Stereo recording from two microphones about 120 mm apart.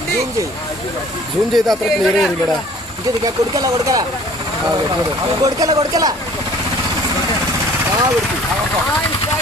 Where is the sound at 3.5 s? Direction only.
30° right (ahead or behind).